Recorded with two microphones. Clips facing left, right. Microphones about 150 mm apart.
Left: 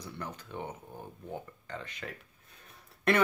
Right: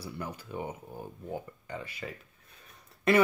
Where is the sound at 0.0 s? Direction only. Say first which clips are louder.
Right 2 dB; 10° right (ahead or behind).